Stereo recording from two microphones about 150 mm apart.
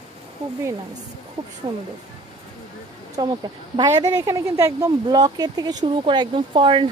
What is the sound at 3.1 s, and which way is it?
Speech, 25° right (ahead or behind).